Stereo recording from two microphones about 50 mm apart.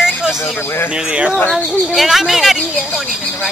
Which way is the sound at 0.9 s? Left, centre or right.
Centre.